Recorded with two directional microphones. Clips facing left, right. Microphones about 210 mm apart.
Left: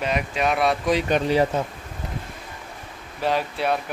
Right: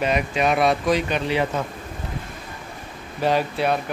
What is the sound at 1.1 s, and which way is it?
Speech, 40° left (ahead or behind).